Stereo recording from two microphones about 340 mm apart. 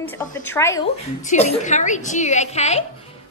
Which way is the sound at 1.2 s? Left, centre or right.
Centre.